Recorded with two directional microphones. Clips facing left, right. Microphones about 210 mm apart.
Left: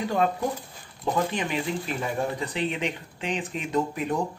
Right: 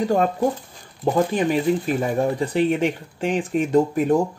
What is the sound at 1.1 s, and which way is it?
Speech, 40° right (ahead or behind).